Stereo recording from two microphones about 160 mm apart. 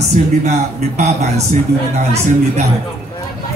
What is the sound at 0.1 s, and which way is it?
A man's voice, 45° right (ahead or behind).